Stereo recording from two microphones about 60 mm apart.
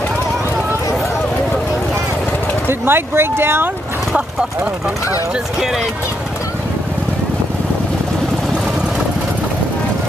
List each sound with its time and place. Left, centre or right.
2.8 s speech: right